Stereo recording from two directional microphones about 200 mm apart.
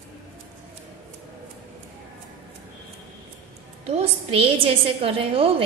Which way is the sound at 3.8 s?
30° right (ahead or behind).